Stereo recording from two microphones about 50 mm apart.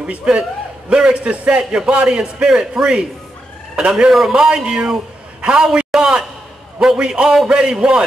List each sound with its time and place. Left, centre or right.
0.0 s a man's voice: right